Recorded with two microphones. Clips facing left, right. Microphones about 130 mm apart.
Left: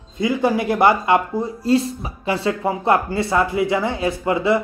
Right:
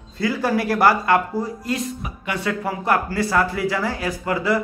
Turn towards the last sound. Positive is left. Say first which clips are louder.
# left 3 dB
turn(degrees=25)  # may be behind; listen again after turning